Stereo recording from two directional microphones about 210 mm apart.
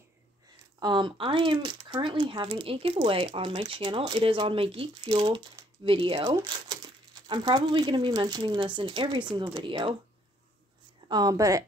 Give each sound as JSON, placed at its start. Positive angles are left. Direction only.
{"t": 0.7, "sound": "speech", "side_deg": -20}
{"t": 11.1, "sound": "speech", "side_deg": -20}